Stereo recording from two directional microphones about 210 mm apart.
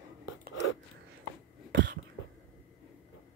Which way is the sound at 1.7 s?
60° right (ahead or behind).